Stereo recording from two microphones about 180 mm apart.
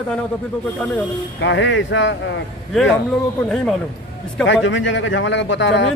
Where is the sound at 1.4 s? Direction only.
90° left.